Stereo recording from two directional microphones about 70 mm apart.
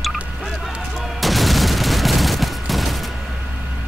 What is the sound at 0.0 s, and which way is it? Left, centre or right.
Gunshot, centre.